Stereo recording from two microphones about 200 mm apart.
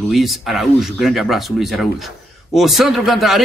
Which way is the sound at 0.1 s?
Centre (ahead or behind).